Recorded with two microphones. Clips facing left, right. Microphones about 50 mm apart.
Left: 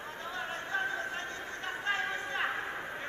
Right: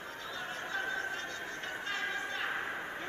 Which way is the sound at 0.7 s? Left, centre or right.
Left.